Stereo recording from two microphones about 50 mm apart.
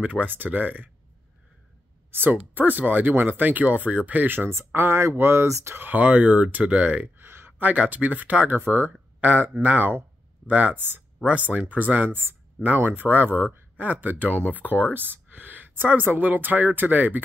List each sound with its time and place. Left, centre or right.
0.0 s speech: right
2.0 s a sound: right
2.5 s speech: right
4.5 s speech: right
5.5 s speech: right
5.8 s speech: right
6.0 s speech: right
7.2 s a sound: right
7.6 s speech: right
8.5 s speech: right
9.2 s speech: right
12.1 s speech: right